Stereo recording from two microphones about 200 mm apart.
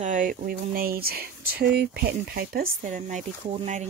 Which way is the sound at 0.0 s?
40° right (ahead or behind).